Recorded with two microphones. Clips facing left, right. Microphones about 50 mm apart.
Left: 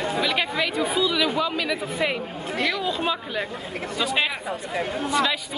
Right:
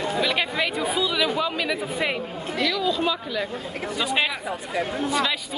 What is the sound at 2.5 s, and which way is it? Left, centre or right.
Speech, left.